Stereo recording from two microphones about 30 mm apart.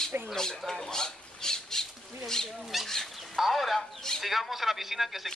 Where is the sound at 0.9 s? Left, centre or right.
Left.